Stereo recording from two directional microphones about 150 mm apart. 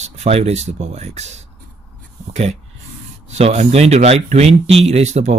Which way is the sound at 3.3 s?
50° right (ahead or behind).